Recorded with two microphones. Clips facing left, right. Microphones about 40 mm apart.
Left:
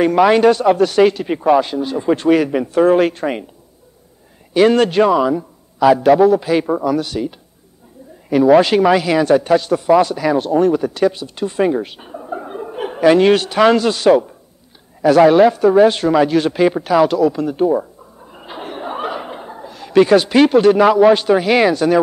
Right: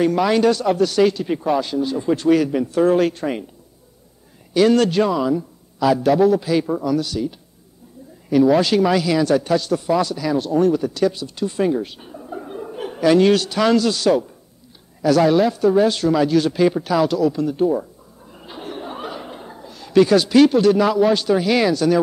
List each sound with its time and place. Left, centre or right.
0.0 s speech: left
4.6 s speech: left
18.3 s chuckle: left